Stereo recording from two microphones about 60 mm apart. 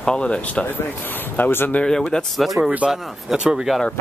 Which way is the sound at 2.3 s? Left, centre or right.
Centre.